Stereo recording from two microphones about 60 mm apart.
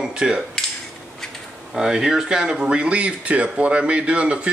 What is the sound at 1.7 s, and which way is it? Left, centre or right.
Speech, centre.